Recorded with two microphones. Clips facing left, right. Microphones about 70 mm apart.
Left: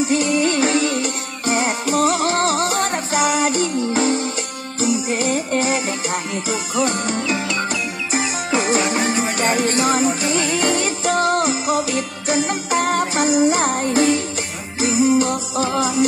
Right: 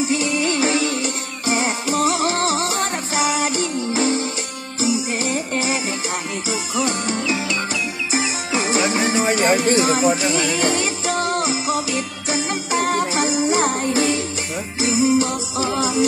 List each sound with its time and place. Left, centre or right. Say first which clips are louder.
0.1 s music: left 3 dB; left